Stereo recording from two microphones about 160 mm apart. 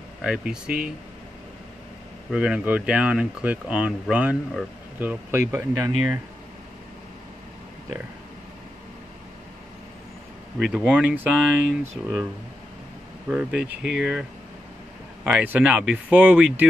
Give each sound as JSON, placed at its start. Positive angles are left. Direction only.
{"t": 0.2, "sound": "speech", "side_deg": -5}
{"t": 2.3, "sound": "speech", "side_deg": -5}
{"t": 10.6, "sound": "speech", "side_deg": 0}
{"t": 13.3, "sound": "speech", "side_deg": -5}
{"t": 15.2, "sound": "speech", "side_deg": -10}